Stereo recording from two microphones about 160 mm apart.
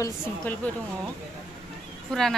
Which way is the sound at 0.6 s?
10° left (ahead or behind).